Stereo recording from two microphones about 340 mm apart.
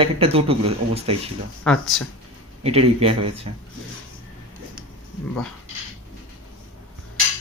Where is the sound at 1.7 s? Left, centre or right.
Centre.